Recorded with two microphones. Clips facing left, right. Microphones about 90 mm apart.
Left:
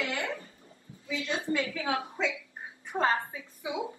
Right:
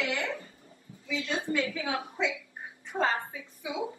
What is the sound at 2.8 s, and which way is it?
Speech, 20° left (ahead or behind).